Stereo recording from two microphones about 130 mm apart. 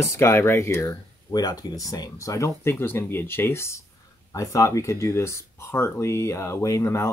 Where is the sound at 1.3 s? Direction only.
30° left (ahead or behind).